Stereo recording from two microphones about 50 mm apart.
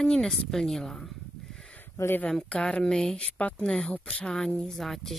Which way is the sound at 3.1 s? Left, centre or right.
Left.